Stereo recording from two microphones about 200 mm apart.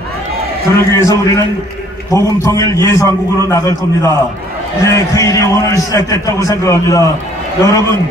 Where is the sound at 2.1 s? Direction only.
15° left (ahead or behind).